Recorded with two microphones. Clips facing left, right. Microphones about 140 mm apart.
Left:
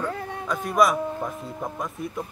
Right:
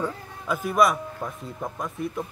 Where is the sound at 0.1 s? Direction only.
70° left (ahead or behind).